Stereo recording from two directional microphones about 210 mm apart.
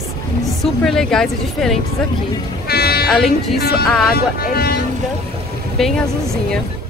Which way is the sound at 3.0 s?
Centre (ahead or behind).